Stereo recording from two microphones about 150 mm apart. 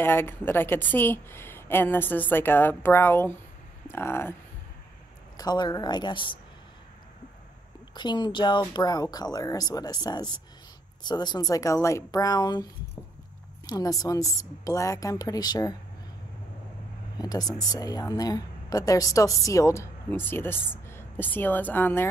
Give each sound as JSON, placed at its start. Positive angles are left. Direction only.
{"t": 0.0, "sound": "a woman's voice", "side_deg": 15}
{"t": 5.4, "sound": "speech", "side_deg": 25}
{"t": 7.9, "sound": "speech", "side_deg": 30}
{"t": 13.7, "sound": "speech", "side_deg": 25}
{"t": 17.2, "sound": "speech", "side_deg": 25}